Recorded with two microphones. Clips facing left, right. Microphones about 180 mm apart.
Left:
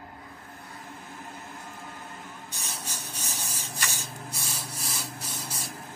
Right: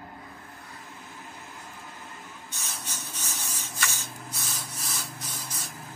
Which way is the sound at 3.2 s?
35° left (ahead or behind).